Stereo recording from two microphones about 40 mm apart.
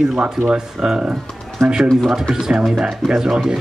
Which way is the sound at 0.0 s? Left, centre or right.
Right.